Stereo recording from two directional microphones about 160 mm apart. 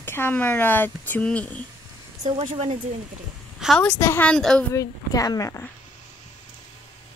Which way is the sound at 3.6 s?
5° left (ahead or behind).